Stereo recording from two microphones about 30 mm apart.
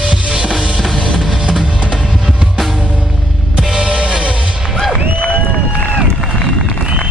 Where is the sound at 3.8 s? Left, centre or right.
Right.